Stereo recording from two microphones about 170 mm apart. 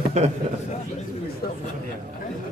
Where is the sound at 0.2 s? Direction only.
40° right (ahead or behind).